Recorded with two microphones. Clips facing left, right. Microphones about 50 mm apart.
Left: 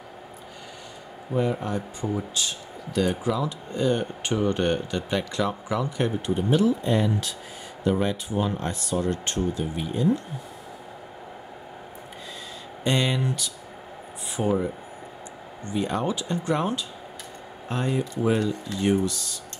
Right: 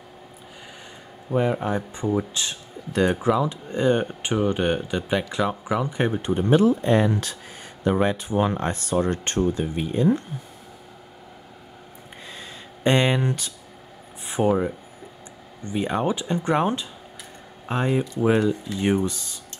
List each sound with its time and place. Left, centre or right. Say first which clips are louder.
1.3 s speech: right 3 dB; right
3.3 s speech: right 3 dB; right
4.2 s speech: right 1 dB; centre; by 7.3 s right
7.8 s speech: right 3 dB; right
12.8 s speech: right 4 dB; right
14.4 s speech: right 4 dB; right
15.6 s speech: right 2 dB; right
18.4 s speech: right 4 dB; centre
18.8 s speech: left 1 dB; right